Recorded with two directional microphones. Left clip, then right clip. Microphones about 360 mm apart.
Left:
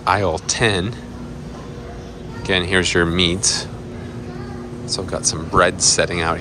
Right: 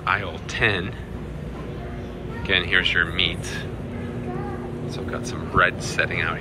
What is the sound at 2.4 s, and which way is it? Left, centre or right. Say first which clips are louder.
Speech: left 2 dB; centre.